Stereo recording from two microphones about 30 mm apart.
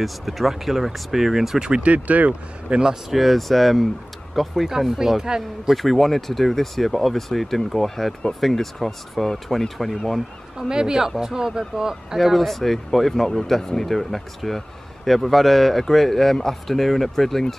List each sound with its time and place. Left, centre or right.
0.0 s speech: centre
1.8 s speech: right
2.7 s speech: right
3.1 s speech: centre
4.6 s speech: centre
5.8 s speech: centre
10.7 s speech: right
12.2 s speech: centre